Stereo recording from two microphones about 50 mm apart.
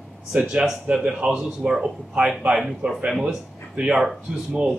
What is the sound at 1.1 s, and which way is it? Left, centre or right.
A man's voice, centre.